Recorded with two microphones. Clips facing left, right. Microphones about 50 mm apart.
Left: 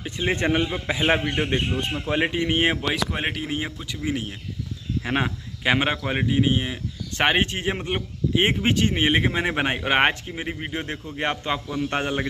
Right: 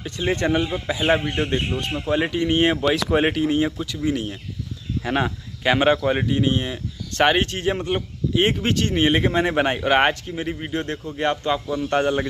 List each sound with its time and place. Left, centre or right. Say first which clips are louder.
0.0 s a man's voice: right 1 dB; left
3.1 s speech: right 8 dB; centre
3.4 s a man's voice: right 8 dB; centre